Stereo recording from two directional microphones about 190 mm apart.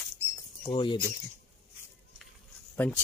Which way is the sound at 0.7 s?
25° left (ahead or behind).